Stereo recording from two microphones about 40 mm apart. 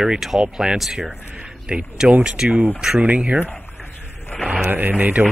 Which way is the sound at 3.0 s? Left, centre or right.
Right.